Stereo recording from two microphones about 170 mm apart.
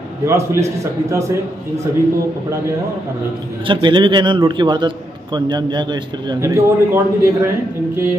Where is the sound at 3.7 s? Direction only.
30° right (ahead or behind).